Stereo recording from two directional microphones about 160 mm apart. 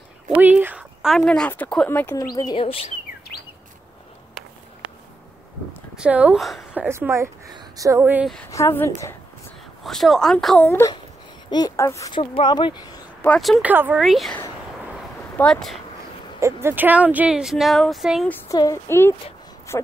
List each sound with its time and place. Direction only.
0.3 s speech: 10° right (ahead or behind); by 2.2 s 15° left (ahead or behind)
2.3 s speech: 30° left (ahead or behind)
5.9 s a woman's voice: 10° right (ahead or behind)
8.5 s speech: 20° left (ahead or behind)
9.8 s speech: centre (ahead or behind)
11.5 s speech: 20° left (ahead or behind)
12.1 s speech: 35° left (ahead or behind)
13.2 s speech: 5° left (ahead or behind)
15.3 s speech: 5° left (ahead or behind)
16.3 s speech: 15° right (ahead or behind)
18.3 s speech: 20° left (ahead or behind)